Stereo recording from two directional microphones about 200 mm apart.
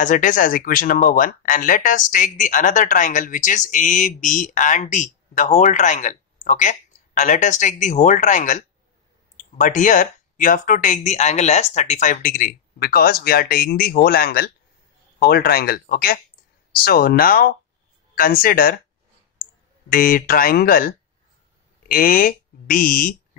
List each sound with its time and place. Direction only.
0.0 s speech: 40° left (ahead or behind)
19.9 s speech: 45° left (ahead or behind)